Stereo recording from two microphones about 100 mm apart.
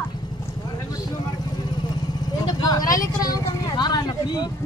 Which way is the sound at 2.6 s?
40° left (ahead or behind).